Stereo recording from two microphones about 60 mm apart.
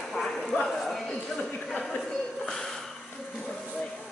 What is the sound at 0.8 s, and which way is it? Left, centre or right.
A capella, centre.